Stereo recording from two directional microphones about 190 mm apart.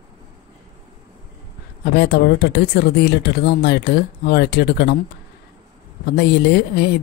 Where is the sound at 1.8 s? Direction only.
60° left (ahead or behind).